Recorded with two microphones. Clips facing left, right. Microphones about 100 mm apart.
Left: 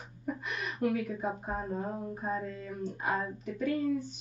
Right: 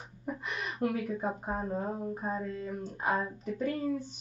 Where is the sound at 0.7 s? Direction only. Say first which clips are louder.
Left 1 dB; 35° right (ahead or behind).